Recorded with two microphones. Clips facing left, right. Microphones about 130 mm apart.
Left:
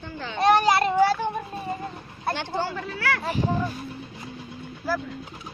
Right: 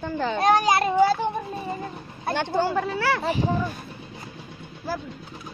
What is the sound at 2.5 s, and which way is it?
Speech, 45° right (ahead or behind).